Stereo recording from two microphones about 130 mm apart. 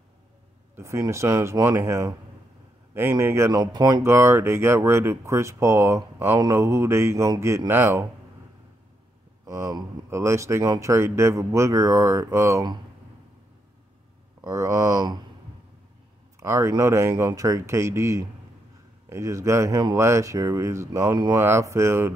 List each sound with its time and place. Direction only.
0.7 s speech: 25° right (ahead or behind)
3.5 s speech: 35° right (ahead or behind)
4.0 s speech: 20° right (ahead or behind)
9.5 s speech: 25° right (ahead or behind)
14.4 s speech: 25° right (ahead or behind)
16.3 s speech: 20° right (ahead or behind)
21.4 s speech: 20° right (ahead or behind)